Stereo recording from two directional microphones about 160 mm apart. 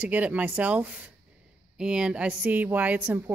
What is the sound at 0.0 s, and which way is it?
A woman's voice, 10° right (ahead or behind).